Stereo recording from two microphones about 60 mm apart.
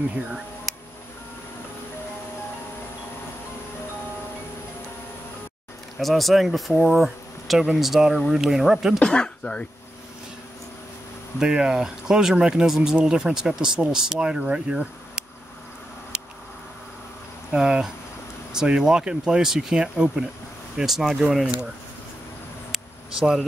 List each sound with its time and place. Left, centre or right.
5.9 s speech: centre
6.7 s speech: centre
7.0 s a sound: centre
7.7 s speech: centre
9.0 s speech: centre
11.3 s speech: centre
16.1 s a sound: centre
17.5 s speech: centre
22.7 s a sound: centre